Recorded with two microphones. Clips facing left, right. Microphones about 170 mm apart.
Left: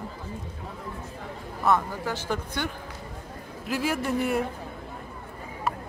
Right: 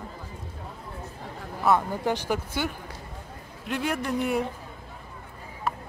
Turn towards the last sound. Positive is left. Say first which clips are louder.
# left 1 dB
turn(degrees=0)  # may be behind; listen again after turning